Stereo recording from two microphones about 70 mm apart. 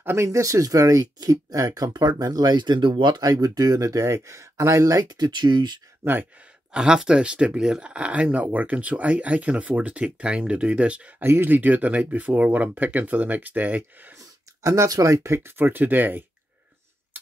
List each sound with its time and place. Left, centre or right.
0.0 s speech: right
0.3 s speech: right
3.3 s speech: right
5.0 s speech: right
6.0 s speech: right
6.7 s speech: centre
11.2 s speech: right
14.1 s speech: right